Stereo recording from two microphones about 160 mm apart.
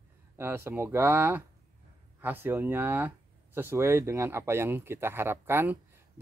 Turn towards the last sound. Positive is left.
turn(degrees=-15)  # may be behind; listen again after turning